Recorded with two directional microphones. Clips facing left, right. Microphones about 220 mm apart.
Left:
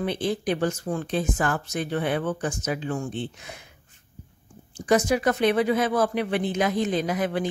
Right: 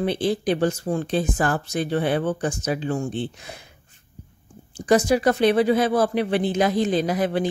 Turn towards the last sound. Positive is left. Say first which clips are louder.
# right 3 dB
turn(degrees=-30)  # may be behind; listen again after turning